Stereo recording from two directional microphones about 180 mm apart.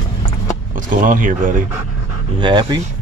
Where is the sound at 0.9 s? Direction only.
45° right (ahead or behind).